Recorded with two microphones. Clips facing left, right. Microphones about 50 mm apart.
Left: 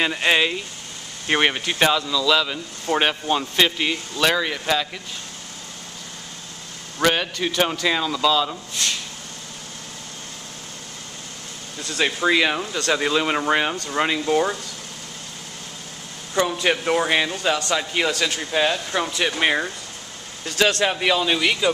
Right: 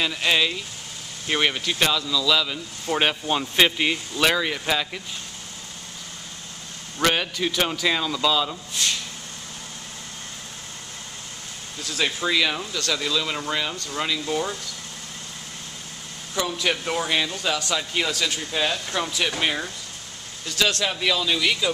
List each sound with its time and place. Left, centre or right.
0.0 s speech: left; by 3.4 s centre
3.5 s speech: centre
7.0 s speech: centre
12.0 s speech: centre
12.8 s speech: left
16.6 s speech: centre
20.4 s speech: left